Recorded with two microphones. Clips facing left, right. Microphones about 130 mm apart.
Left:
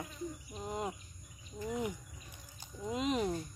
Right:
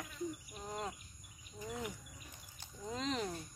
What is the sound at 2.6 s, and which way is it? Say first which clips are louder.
Speech: left 5 dB; 15° left (ahead or behind).